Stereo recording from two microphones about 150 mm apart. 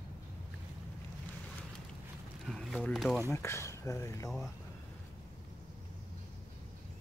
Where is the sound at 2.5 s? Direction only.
5° left (ahead or behind).